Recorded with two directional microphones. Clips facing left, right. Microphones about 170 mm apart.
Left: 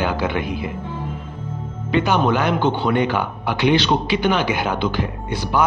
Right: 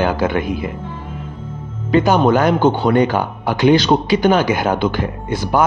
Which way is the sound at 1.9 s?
40° right (ahead or behind).